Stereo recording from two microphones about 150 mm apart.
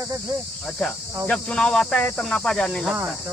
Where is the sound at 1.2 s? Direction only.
5° left (ahead or behind).